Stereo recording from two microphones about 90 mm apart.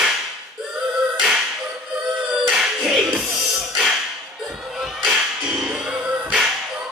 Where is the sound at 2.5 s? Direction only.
5° right (ahead or behind).